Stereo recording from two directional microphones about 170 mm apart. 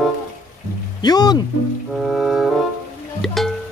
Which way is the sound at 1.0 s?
25° left (ahead or behind).